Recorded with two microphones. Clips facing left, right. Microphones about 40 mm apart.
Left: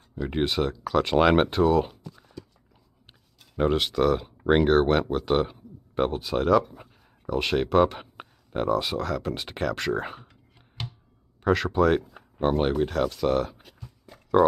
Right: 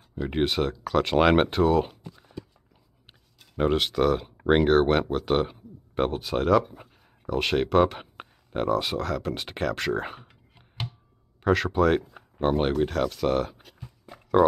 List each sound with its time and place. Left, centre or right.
0.1 s speech: centre
3.3 s speech: centre
11.4 s speech: centre
13.7 s a sound: centre